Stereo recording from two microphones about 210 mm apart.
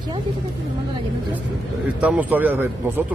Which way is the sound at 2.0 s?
10° right (ahead or behind).